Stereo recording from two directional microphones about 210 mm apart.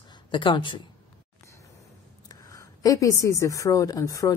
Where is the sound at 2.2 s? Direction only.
15° left (ahead or behind).